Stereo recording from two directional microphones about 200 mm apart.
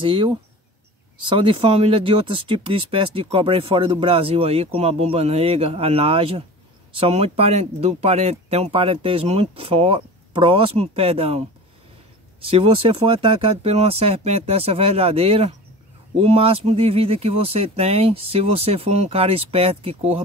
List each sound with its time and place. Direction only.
0.0 s speech: 25° right (ahead or behind)